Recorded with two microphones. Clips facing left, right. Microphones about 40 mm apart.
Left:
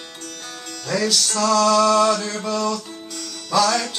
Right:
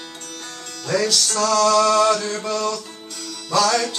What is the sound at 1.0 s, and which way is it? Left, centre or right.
Music, centre.